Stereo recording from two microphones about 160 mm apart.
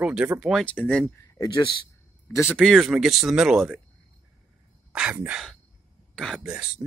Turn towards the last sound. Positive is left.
turn(degrees=-5)  # may be behind; listen again after turning